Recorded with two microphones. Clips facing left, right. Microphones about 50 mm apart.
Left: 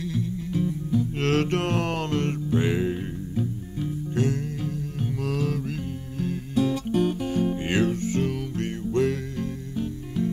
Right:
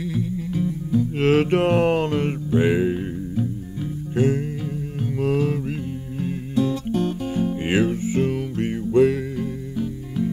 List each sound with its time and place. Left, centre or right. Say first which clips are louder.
0.0 s music: right 3 dB; centre
6.5 s music: right 1 dB; centre
7.6 s music: right 3 dB; centre